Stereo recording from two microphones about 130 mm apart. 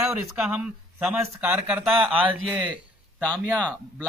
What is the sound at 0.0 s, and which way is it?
Speech, 20° right (ahead or behind).